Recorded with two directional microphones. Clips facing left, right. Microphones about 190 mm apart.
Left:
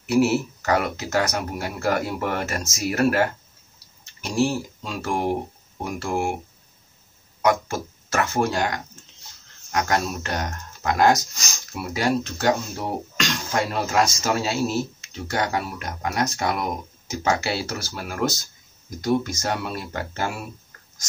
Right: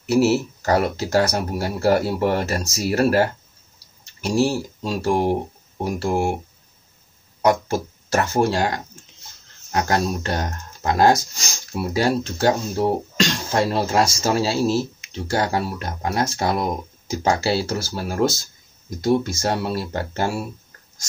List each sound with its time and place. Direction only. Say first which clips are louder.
0.1 s speech: right 2 dB; 35° right (ahead or behind)
4.8 s speech: right 5 dB; 35° right (ahead or behind)
7.4 s speech: right 3 dB; 35° right (ahead or behind)